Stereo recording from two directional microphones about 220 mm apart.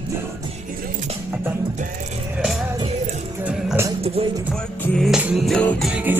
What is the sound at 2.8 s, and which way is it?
Music, 30° right (ahead or behind).